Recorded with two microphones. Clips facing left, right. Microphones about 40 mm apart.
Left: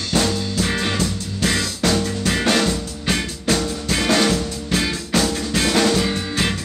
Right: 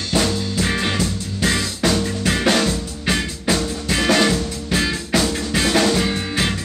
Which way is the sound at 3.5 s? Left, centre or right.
Centre.